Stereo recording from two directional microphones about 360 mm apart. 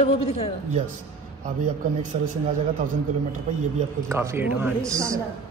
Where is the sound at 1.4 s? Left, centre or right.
Right.